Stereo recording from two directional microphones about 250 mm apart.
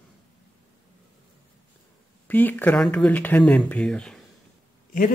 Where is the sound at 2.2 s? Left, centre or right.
Centre.